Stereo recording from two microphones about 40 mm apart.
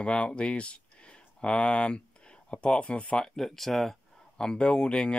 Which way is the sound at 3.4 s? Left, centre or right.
Centre.